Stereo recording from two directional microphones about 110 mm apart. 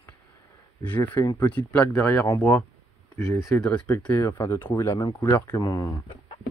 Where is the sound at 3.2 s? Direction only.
25° left (ahead or behind).